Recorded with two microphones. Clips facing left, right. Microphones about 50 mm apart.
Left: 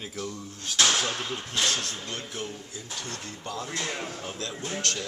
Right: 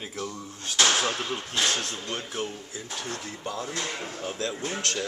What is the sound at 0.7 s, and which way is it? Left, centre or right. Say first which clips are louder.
Speech: right 1 dB; centre.